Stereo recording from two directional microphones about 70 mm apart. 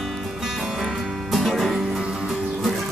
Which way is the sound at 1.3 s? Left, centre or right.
Centre.